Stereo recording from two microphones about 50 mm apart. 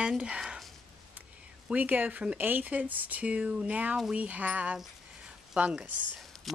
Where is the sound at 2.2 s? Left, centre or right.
Right.